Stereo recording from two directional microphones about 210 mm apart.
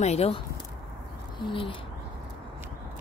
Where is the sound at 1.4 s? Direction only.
25° left (ahead or behind).